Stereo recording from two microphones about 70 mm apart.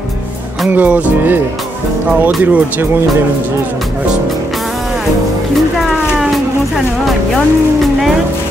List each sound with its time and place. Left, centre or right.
0.7 s speech: right